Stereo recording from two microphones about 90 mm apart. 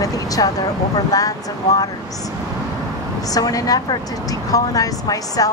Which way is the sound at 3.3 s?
40° left (ahead or behind).